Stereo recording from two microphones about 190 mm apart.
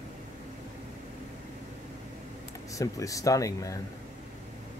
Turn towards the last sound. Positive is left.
turn(degrees=15)  # may be behind; listen again after turning